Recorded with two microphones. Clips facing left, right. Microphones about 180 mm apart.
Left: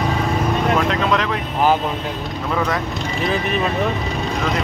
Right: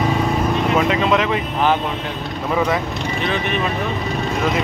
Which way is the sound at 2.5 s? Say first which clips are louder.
Right 3 dB; 5° right (ahead or behind).